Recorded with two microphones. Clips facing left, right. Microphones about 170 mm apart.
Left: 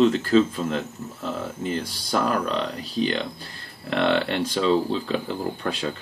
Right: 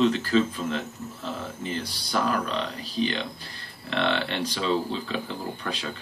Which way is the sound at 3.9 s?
45° left (ahead or behind).